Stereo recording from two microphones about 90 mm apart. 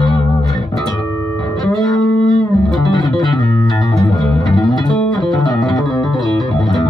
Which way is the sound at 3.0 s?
55° left (ahead or behind).